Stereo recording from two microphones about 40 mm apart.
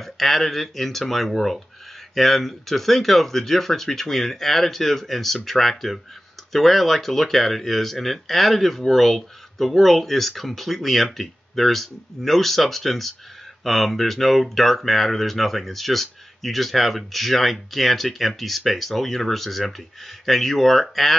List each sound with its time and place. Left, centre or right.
0.0 s speech: centre